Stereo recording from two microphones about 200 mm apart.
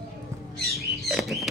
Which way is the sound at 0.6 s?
50° right (ahead or behind).